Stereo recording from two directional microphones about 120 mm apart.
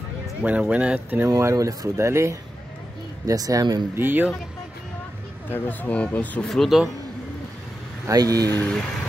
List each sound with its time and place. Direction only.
0.4 s speech: 10° right (ahead or behind)
1.3 s speech: 25° right (ahead or behind)
3.9 s speech: 15° right (ahead or behind)
5.5 s speech: 15° left (ahead or behind)
6.5 s a man's voice: centre (ahead or behind)
8.1 s speech: 30° right (ahead or behind)
8.5 s speech: 20° left (ahead or behind)